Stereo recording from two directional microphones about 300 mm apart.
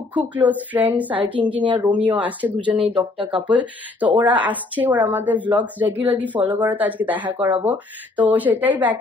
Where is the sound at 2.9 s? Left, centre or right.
Centre.